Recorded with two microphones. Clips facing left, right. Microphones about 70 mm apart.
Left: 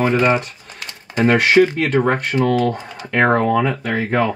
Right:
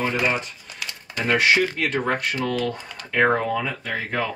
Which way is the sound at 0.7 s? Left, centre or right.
Left.